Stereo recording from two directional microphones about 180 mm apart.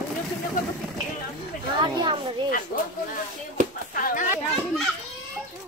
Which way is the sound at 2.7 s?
50° left (ahead or behind).